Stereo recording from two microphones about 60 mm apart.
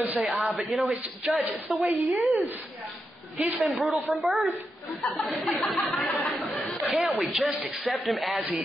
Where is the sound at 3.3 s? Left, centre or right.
Right.